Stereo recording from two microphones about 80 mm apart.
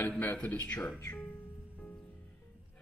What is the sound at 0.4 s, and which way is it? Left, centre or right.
Speech, left.